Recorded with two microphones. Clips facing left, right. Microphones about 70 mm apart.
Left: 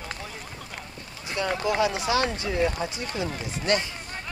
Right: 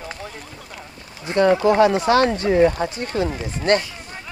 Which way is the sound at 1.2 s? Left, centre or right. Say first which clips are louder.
Right 11 dB; right.